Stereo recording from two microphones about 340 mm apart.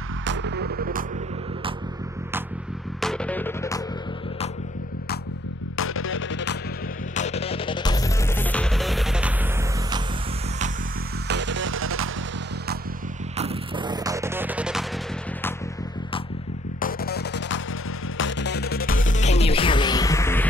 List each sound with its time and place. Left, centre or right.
0.2 s music: right
3.0 s music: centre
5.8 s music: left
7.2 s music: centre
11.2 s music: right
13.4 s music: centre
16.8 s music: left; by 20.4 s centre